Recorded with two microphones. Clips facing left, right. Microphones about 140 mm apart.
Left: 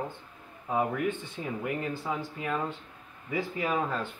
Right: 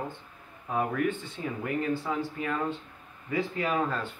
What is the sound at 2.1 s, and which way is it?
Speech, 15° left (ahead or behind).